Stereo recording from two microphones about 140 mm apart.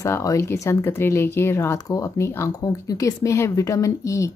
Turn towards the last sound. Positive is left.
turn(degrees=20)  # may be behind; listen again after turning